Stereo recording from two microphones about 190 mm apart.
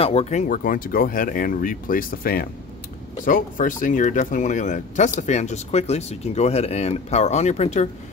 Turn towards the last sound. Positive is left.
turn(degrees=35)  # may be behind; listen again after turning